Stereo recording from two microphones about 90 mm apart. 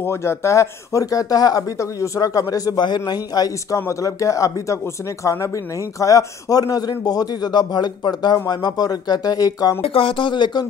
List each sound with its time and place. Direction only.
0.0 s a man's voice: 30° left (ahead or behind)
9.8 s speech: 90° left; by 10.7 s 55° left (ahead or behind)